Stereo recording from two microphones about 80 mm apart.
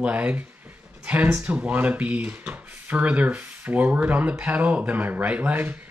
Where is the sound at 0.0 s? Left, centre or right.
Centre.